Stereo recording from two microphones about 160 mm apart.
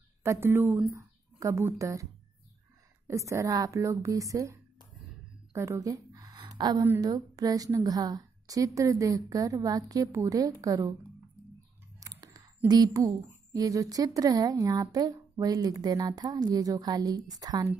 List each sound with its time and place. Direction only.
0.2 s a woman's voice: 15° right (ahead or behind)
3.1 s speech: 20° right (ahead or behind)
5.5 s a sound: 15° right (ahead or behind)
7.0 s speech: 25° right (ahead or behind)
12.0 s a sound: 20° right (ahead or behind)
12.6 s speech: 25° right (ahead or behind)